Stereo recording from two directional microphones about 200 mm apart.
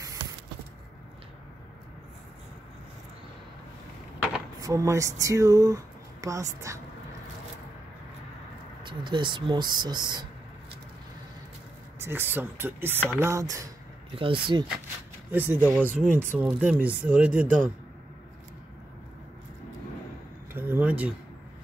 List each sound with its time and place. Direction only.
0.0 s a sound: 15° right (ahead or behind)
4.6 s speech: 15° right (ahead or behind)
8.8 s speech: 25° right (ahead or behind)
12.0 s speech: 10° right (ahead or behind)
14.1 s speech: 25° right (ahead or behind)
15.3 s speech: 10° right (ahead or behind)
20.5 s speech: 10° right (ahead or behind)